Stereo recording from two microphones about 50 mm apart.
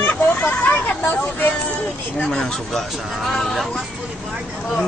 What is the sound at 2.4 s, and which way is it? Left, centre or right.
Speech, centre.